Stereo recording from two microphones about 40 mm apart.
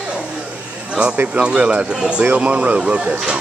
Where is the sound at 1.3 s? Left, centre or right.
Right.